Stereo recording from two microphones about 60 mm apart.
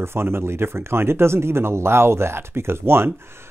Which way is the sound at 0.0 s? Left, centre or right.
Right.